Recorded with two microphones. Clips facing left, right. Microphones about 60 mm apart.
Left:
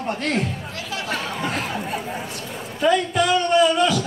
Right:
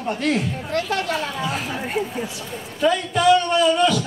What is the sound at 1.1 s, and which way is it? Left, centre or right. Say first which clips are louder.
Chatter: right 1 dB; left.